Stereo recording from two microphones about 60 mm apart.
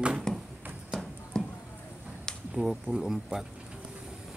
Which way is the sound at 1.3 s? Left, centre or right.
Centre.